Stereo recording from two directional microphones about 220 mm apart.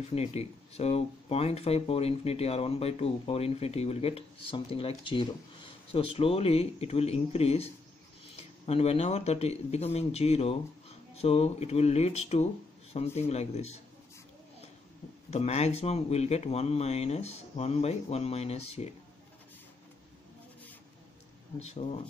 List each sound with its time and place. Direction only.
0.1 s speech: 30° left (ahead or behind)
5.1 s a sound: 25° left (ahead or behind)
6.1 s speech: 25° left (ahead or behind)
15.3 s speech: 30° left (ahead or behind)
21.5 s speech: 30° left (ahead or behind)